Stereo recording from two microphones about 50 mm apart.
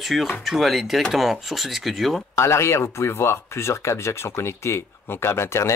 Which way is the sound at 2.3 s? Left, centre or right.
Left.